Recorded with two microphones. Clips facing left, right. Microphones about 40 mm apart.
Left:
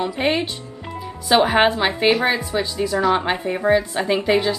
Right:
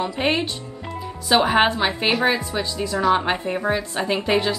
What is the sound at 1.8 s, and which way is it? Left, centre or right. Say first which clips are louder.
A woman's voice: left 3 dB; centre.